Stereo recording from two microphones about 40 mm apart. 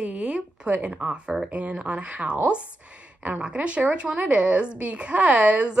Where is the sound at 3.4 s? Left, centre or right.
Right.